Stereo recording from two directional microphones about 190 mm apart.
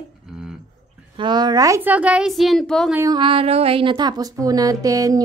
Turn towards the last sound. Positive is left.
turn(degrees=-20)  # may be behind; listen again after turning